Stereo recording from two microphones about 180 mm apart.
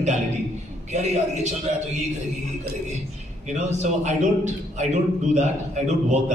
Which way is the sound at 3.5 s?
40° right (ahead or behind).